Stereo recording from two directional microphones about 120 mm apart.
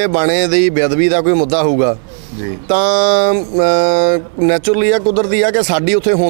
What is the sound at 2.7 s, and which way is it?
A man's voice, 10° right (ahead or behind).